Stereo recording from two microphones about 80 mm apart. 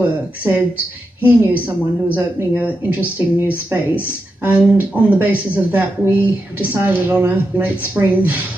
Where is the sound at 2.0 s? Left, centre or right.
Right.